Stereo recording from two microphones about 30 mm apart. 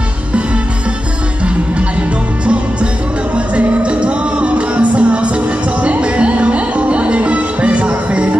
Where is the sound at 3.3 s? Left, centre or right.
Right.